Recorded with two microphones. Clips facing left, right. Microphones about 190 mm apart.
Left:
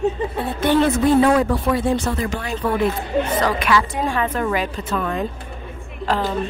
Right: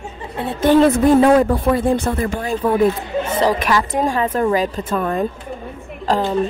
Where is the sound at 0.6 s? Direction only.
50° right (ahead or behind).